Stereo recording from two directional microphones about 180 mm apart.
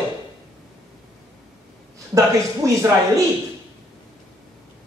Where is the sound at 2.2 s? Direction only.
15° right (ahead or behind).